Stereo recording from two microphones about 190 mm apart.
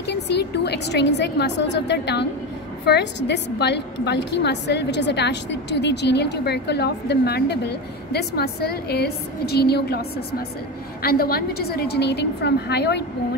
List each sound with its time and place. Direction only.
0.0 s a woman's voice: 60° left (ahead or behind)
11.0 s a woman's voice: 55° left (ahead or behind)